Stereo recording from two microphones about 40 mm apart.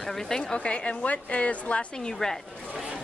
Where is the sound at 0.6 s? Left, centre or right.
Left.